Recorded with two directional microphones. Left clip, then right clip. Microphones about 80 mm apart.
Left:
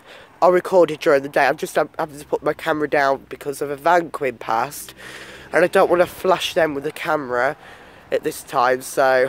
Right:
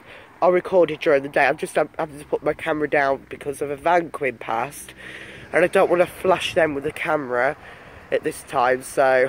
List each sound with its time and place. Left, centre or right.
0.4 s speech: left
5.5 s speech: left
6.2 s speech: left